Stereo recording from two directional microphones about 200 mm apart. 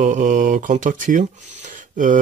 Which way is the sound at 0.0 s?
40° right (ahead or behind).